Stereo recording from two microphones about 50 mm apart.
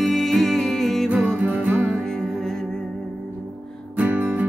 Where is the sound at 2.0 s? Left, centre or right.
Centre.